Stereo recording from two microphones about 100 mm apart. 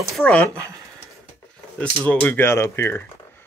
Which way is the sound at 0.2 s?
15° left (ahead or behind).